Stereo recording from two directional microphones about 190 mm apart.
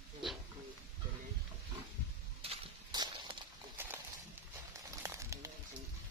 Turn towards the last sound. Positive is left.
turn(degrees=-15)  # may be behind; listen again after turning